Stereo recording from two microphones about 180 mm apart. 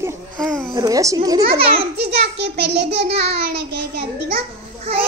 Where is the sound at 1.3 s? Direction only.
30° right (ahead or behind).